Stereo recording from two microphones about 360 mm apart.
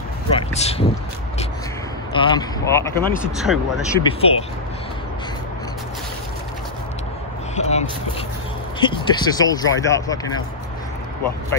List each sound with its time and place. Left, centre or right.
0.3 s a sound: centre
2.1 s speech: centre
4.0 s speech: centre
7.5 s speech: centre